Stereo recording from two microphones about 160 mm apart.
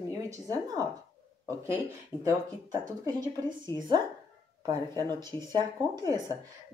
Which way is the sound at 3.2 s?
25° right (ahead or behind).